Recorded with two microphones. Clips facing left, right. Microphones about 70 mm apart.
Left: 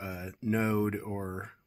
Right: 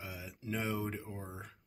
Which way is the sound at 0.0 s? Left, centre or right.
Left.